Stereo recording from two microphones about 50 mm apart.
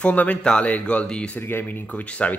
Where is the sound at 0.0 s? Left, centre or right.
Left.